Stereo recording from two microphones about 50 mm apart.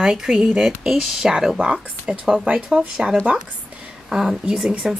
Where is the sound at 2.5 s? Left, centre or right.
Right.